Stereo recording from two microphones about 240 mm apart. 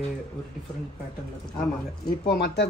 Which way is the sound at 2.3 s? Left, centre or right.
Left.